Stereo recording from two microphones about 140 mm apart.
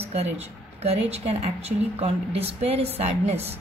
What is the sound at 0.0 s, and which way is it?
A woman's voice, 50° right (ahead or behind).